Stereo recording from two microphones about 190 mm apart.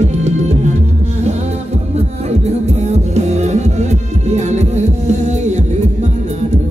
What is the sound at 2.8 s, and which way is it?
Music, 35° right (ahead or behind).